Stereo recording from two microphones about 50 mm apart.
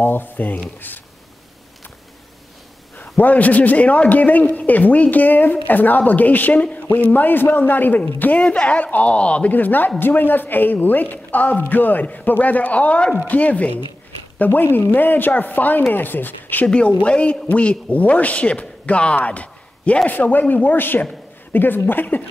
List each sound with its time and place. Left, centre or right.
0.0 s a man's voice: left
3.0 s a man's voice: left
9.5 s a man's voice: left
14.4 s a man's voice: left
16.6 s a man's voice: left